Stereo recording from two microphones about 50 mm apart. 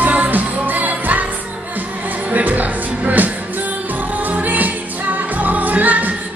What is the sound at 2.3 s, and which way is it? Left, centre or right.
Music, right.